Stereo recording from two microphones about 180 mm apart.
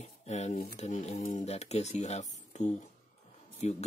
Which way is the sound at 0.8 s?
40° left (ahead or behind).